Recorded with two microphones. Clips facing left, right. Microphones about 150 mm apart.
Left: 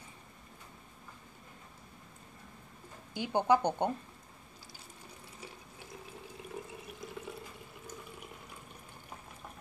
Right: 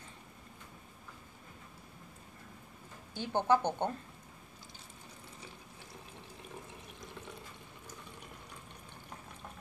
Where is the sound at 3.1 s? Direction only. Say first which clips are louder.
Left 1 dB; 15° left (ahead or behind).